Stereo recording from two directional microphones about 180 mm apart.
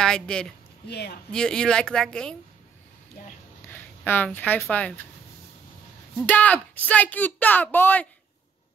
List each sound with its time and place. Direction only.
0.0 s speech: 5° left (ahead or behind)
0.8 s speech: 65° left (ahead or behind)
1.3 s speech: 5° left (ahead or behind)
3.6 s speech: 10° left (ahead or behind)
6.1 s a woman's voice: 10° left (ahead or behind)